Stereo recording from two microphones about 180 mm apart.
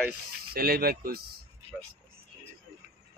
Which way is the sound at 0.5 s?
55° right (ahead or behind).